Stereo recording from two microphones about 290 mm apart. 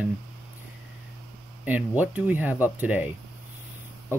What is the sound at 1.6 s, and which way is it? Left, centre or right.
Speech, centre.